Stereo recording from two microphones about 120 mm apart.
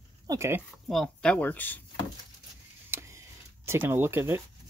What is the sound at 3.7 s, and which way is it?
Speech, 20° right (ahead or behind).